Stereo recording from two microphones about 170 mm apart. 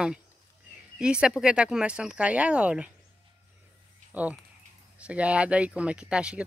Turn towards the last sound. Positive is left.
turn(degrees=-5)  # may be behind; listen again after turning